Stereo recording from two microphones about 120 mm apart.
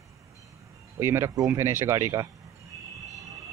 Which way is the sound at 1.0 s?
20° right (ahead or behind).